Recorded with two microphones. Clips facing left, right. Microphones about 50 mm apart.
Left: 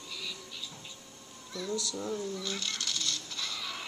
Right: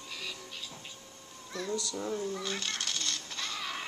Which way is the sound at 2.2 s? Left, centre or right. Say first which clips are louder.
Right 1 dB; right.